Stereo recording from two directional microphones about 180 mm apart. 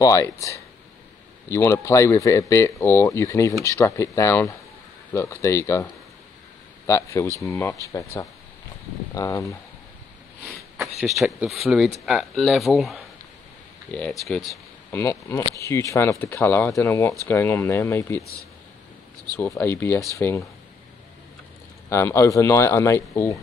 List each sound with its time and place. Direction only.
0.0 s speech: 15° left (ahead or behind)
6.9 s speech: 15° left (ahead or behind)
11.0 s speech: centre (ahead or behind)
14.9 s speech: 15° left (ahead or behind)
19.3 s speech: 10° left (ahead or behind)
21.8 s speech: 15° left (ahead or behind)